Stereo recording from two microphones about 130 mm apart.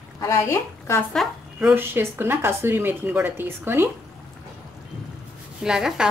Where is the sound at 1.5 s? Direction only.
15° right (ahead or behind).